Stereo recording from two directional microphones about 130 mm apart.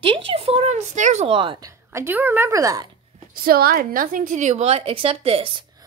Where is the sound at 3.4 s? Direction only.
90° right.